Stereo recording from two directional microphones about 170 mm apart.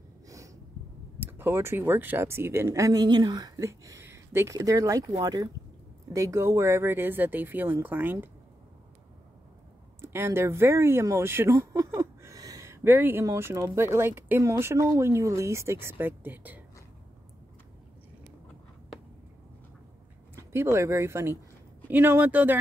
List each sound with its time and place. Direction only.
1.2 s speech: 15° right (ahead or behind)
10.0 s speech: 15° right (ahead or behind)
20.7 s speech: 15° right (ahead or behind)